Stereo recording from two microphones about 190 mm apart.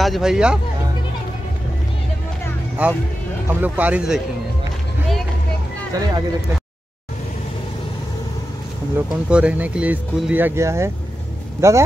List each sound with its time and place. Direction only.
0.0 s speech: centre (ahead or behind)
2.8 s speech: 5° right (ahead or behind)
5.9 s speech: 20° right (ahead or behind)
8.9 s speech: 5° right (ahead or behind)